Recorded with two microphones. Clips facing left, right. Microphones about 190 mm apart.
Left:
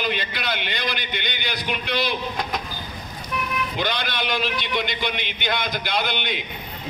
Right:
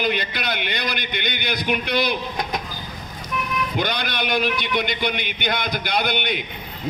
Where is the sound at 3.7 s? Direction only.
45° right (ahead or behind).